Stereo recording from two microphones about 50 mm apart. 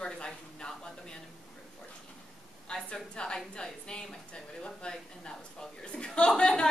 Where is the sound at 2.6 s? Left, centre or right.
Centre.